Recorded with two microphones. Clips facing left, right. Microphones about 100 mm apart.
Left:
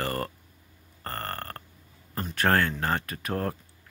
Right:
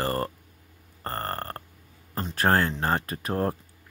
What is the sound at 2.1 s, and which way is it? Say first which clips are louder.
Speech: right 1 dB; 30° right (ahead or behind).